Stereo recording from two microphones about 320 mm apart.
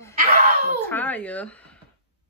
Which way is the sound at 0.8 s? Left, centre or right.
Centre.